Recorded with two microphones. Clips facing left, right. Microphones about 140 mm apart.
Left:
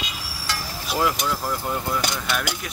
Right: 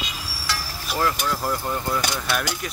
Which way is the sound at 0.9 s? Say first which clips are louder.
Left 1 dB; 10° left (ahead or behind).